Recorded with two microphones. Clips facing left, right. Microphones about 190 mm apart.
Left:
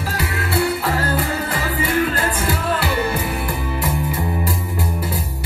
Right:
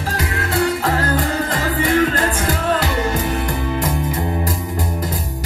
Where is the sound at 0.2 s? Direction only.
40° right (ahead or behind).